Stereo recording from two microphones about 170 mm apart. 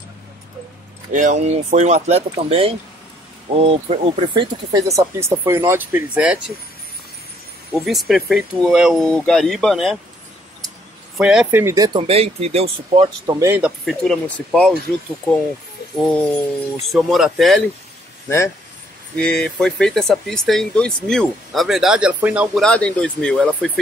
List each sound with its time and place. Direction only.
1.1 s speech: 45° right (ahead or behind); by 6.5 s 5° right (ahead or behind)
7.7 s speech: centre (ahead or behind)
11.1 s speech: 5° right (ahead or behind)
11.6 s speech: 20° right (ahead or behind)
12.0 s speech: 35° right (ahead or behind)
13.4 s speech: 10° right (ahead or behind)
16.9 s speech: centre (ahead or behind)
19.1 s speech: 5° left (ahead or behind)
22.6 s speech: 5° left (ahead or behind)